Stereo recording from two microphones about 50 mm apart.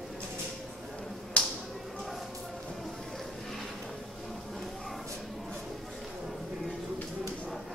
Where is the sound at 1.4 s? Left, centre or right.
Left.